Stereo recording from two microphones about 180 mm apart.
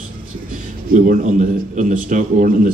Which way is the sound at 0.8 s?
50° right (ahead or behind).